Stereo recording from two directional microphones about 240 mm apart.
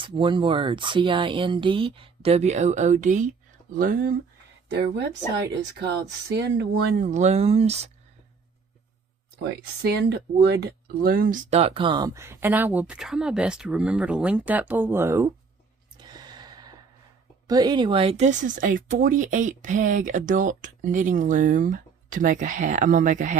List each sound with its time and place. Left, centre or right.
0.0 s speech: right
9.8 s speech: right; by 15.3 s centre
16.0 s sigh: centre
17.5 s speech: centre; by 23.3 s right